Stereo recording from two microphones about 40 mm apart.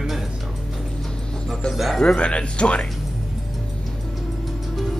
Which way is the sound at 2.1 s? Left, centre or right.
Left.